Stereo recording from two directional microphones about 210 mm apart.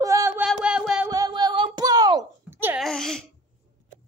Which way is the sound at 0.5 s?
5° right (ahead or behind).